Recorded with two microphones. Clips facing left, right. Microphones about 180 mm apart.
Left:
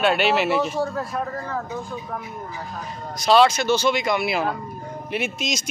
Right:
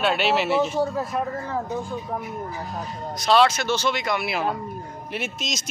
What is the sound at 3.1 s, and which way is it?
Speech, centre (ahead or behind).